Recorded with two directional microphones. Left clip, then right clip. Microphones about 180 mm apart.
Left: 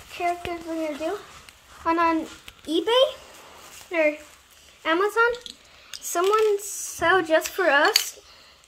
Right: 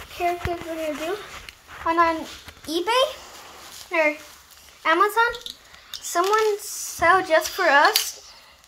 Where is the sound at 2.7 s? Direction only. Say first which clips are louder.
Left 1 dB; 35° left (ahead or behind).